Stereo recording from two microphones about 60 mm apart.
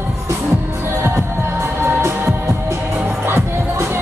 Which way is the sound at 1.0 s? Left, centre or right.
Right.